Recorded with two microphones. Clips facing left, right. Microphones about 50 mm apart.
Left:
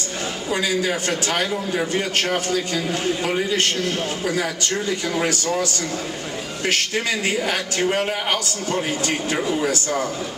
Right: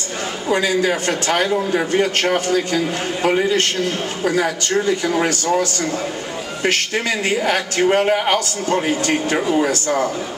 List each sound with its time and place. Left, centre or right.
0.5 s a man's voice: right
6.7 s a man's voice: centre